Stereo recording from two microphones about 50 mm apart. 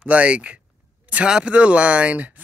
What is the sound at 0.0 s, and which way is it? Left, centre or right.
Speech, right.